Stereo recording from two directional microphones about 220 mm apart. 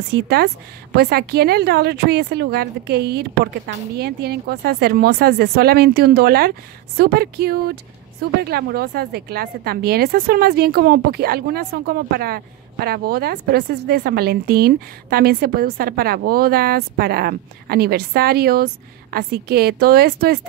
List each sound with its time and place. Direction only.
0.1 s a woman's voice: 45° right (ahead or behind)